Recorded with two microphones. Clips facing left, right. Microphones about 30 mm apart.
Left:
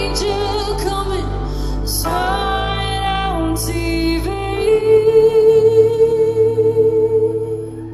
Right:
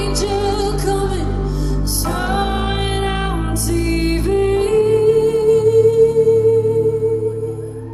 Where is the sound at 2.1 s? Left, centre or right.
Centre.